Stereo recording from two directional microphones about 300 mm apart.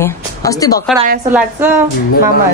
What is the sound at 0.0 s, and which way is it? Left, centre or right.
Speech, centre.